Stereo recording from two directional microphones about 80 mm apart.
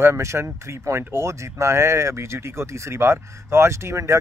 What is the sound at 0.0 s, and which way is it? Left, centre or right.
Speech, right.